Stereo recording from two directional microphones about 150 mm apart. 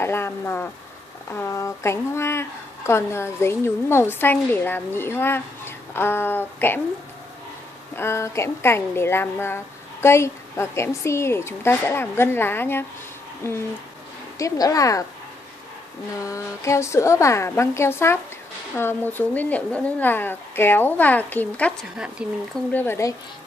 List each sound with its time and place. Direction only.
0.0 s a woman's voice: 15° left (ahead or behind)
7.9 s a woman's voice: 15° left (ahead or behind)
14.4 s a woman's voice: 20° left (ahead or behind)
16.2 s a woman's voice: 20° left (ahead or behind)
22.2 s speech: 5° right (ahead or behind)
22.7 s a woman's voice: 15° left (ahead or behind)